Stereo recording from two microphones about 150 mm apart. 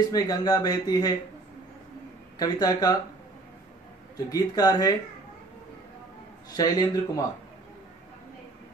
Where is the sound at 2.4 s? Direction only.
25° left (ahead or behind).